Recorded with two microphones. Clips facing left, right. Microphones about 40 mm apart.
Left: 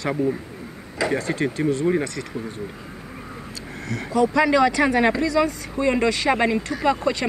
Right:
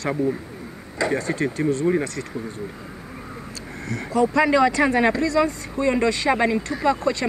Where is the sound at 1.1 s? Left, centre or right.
Left.